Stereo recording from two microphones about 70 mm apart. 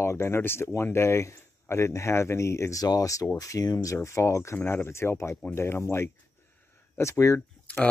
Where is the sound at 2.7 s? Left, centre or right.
Left.